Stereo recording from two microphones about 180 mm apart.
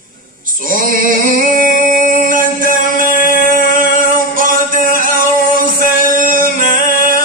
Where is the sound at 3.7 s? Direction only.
50° right (ahead or behind).